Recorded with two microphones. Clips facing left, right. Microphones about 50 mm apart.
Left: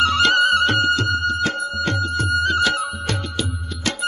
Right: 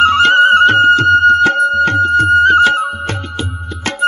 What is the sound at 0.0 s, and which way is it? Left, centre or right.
Music, right.